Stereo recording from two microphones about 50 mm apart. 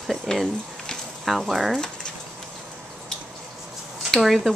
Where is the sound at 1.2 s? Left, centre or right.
Centre.